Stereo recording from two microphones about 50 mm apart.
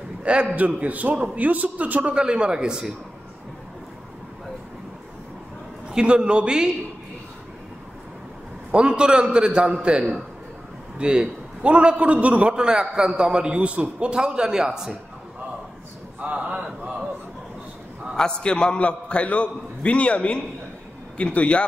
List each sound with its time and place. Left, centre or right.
0.2 s a man's voice: right
2.1 s a man's voice: centre
5.9 s a man's voice: centre
8.7 s a man's voice: centre
16.2 s speech: right
18.1 s a man's voice: centre